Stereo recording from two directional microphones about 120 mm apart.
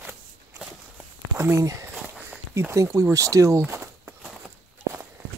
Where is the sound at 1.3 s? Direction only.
20° right (ahead or behind).